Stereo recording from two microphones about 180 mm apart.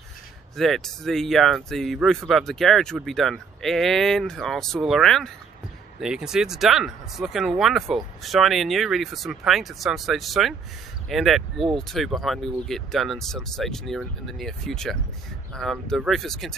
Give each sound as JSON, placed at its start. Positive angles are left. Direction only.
{"t": 0.6, "sound": "speech", "side_deg": 0}